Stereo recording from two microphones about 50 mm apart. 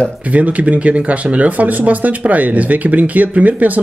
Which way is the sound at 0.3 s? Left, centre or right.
Right.